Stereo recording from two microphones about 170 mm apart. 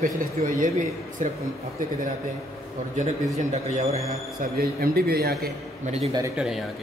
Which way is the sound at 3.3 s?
40° right (ahead or behind).